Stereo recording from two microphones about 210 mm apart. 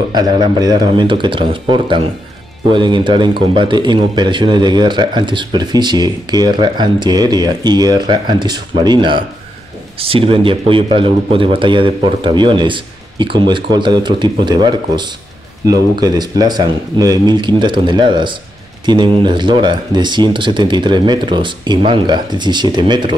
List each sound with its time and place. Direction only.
0.1 s speech: 20° right (ahead or behind)